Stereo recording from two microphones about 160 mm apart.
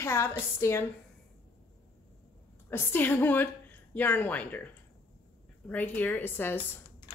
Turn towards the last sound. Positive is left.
turn(degrees=15)  # may be behind; listen again after turning